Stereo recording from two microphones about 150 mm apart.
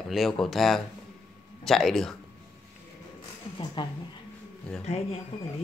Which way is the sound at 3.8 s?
30° left (ahead or behind).